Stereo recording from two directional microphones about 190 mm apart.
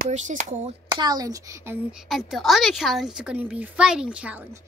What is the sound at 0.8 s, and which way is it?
A woman's voice, 20° right (ahead or behind).